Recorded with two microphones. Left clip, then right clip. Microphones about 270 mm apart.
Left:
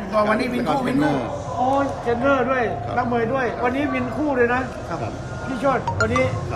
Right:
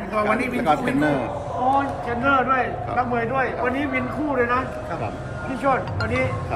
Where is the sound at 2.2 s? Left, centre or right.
Left.